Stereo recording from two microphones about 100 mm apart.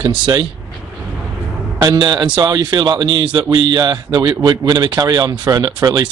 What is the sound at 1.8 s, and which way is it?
Speech, 45° right (ahead or behind).